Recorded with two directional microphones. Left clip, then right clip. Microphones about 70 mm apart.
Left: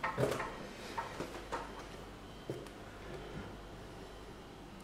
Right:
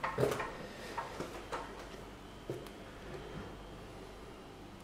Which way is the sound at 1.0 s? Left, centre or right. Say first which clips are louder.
Even; centre.